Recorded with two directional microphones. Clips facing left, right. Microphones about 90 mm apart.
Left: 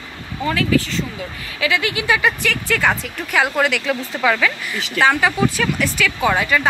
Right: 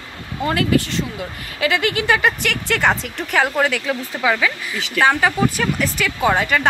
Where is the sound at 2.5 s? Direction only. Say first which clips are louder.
Even; 20° right (ahead or behind).